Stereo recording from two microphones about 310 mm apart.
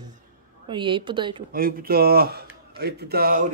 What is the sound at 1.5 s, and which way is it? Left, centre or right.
A man's voice, right.